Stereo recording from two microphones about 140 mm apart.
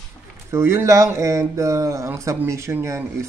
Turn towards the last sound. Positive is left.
turn(degrees=-20)  # may be behind; listen again after turning